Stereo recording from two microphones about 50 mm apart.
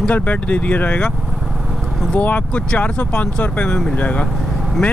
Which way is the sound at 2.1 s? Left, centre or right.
Left.